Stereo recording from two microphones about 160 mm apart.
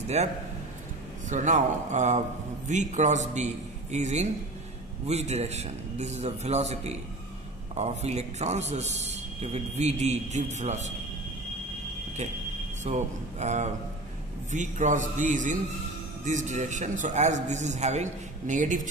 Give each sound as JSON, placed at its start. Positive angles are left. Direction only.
{"t": 0.2, "sound": "a man's voice", "side_deg": -45}
{"t": 12.8, "sound": "a man's voice", "side_deg": -45}